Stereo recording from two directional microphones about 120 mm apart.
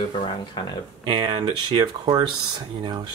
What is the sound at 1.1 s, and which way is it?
Speech, 40° right (ahead or behind).